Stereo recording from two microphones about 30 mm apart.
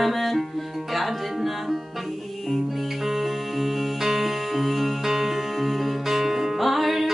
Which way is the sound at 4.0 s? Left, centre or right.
Centre.